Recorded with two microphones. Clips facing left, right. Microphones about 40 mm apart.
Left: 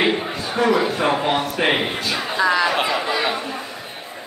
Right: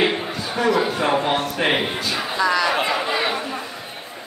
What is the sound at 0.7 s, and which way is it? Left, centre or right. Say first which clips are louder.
A man's voice: even; centre.